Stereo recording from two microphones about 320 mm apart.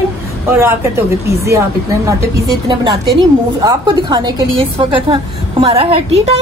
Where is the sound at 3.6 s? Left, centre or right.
Centre.